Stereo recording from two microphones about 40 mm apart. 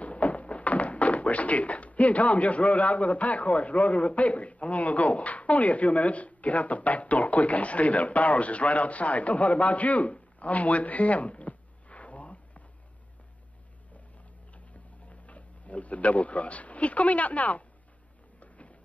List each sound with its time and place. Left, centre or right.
0.0 s speech: left
10.4 s a sound: left
15.0 s speech: left